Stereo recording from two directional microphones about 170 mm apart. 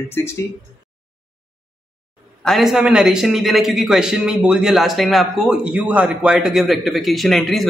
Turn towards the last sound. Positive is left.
turn(degrees=0)  # may be behind; listen again after turning